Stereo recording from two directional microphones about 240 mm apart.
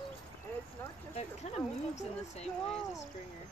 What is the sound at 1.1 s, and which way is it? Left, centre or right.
Speech, left.